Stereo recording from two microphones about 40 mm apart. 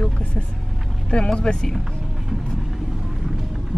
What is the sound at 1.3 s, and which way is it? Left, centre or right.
Speech, centre.